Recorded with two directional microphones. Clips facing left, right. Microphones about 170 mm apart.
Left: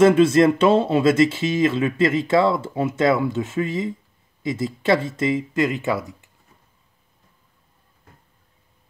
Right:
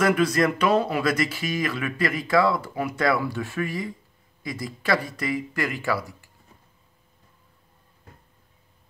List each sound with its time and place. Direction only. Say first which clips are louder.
0.0 s speech: left 7 dB; 25° left (ahead or behind)